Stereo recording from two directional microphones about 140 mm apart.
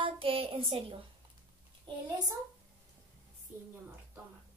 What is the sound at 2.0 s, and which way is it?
Speech, 25° right (ahead or behind).